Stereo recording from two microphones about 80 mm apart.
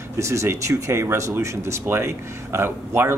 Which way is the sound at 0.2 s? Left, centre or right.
Right.